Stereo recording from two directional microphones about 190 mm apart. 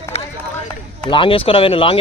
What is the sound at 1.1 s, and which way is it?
Speech, 25° left (ahead or behind).